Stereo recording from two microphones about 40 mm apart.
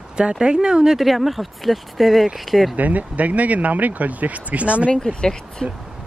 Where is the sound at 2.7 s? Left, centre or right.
Right.